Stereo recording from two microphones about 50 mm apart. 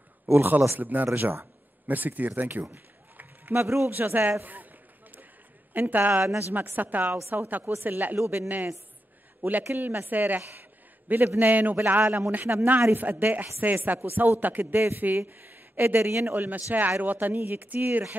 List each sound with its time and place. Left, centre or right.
0.3 s a man's voice: right
2.7 s a sound: right
3.5 s a man's voice: right
5.7 s a man's voice: right
16.3 s a man's voice: right